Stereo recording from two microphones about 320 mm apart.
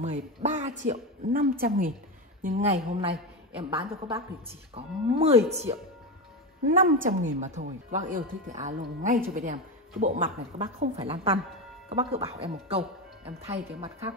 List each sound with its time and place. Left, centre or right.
0.0 s a woman's voice: right